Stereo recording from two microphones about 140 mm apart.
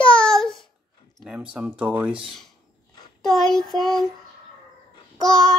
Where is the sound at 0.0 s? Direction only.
40° left (ahead or behind).